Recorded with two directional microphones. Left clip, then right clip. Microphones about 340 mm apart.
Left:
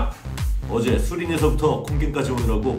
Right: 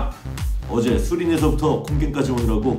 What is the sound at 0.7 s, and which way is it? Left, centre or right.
A man's voice, centre.